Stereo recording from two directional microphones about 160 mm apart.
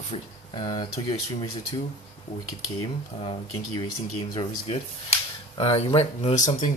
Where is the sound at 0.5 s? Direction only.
30° left (ahead or behind).